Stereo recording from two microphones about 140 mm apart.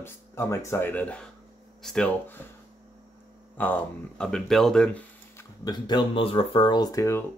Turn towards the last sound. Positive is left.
turn(degrees=20)  # may be behind; listen again after turning